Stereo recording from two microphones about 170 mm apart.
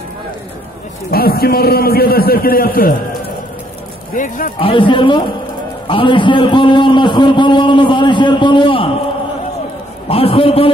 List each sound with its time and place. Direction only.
1.1 s a man's voice: 65° left (ahead or behind)
4.6 s a man's voice: 30° left (ahead or behind)
10.0 s a man's voice: 35° left (ahead or behind)